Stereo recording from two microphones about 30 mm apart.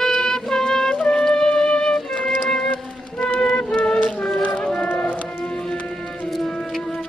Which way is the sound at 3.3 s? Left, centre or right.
Left.